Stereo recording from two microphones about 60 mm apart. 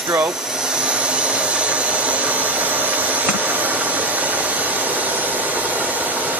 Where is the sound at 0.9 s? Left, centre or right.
Centre.